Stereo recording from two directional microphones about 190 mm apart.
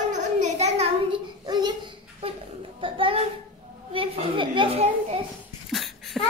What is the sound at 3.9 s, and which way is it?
Speech, 25° right (ahead or behind).